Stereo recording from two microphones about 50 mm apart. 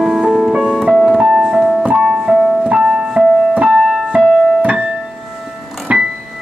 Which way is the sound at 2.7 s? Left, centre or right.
Centre.